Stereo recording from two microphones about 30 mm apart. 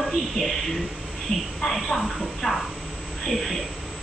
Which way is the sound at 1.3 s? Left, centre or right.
Left.